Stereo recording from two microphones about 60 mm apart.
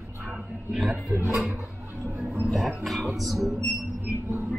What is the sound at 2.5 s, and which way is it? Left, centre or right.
Music, centre.